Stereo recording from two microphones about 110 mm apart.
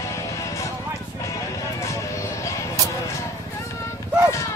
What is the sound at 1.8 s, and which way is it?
Music, 30° left (ahead or behind).